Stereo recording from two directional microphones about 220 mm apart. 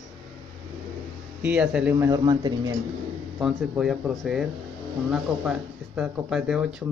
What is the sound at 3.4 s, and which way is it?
Speech, 5° right (ahead or behind).